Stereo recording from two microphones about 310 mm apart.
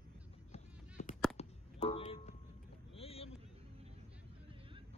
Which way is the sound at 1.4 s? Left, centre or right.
Centre.